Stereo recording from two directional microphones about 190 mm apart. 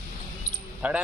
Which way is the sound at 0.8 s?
10° right (ahead or behind).